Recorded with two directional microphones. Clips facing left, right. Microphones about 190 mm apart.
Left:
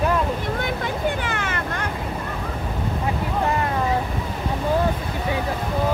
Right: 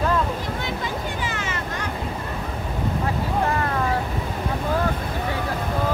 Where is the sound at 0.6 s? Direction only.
55° left (ahead or behind).